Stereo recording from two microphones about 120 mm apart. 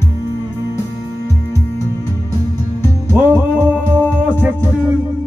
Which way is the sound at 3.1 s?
15° right (ahead or behind).